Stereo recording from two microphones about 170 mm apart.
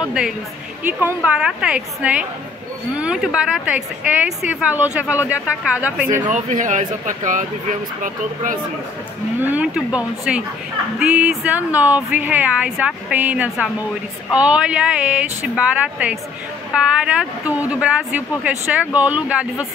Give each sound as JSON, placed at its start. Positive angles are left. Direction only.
{"t": 0.0, "sound": "a woman's voice", "side_deg": -5}
{"t": 6.2, "sound": "speech", "side_deg": -45}
{"t": 9.4, "sound": "speech", "side_deg": -10}